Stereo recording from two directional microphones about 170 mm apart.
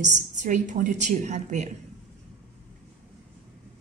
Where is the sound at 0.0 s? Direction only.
45° right (ahead or behind).